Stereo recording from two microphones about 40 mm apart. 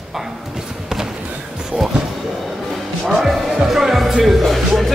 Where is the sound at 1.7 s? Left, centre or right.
Right.